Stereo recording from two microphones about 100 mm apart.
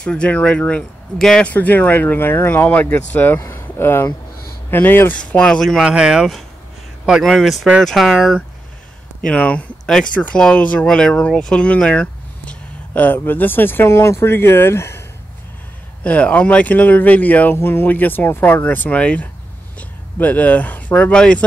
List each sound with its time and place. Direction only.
0.0 s speech: 10° left (ahead or behind)
5.9 s speech: 10° right (ahead or behind)
9.2 s speech: 10° left (ahead or behind)
16.0 s speech: 15° left (ahead or behind)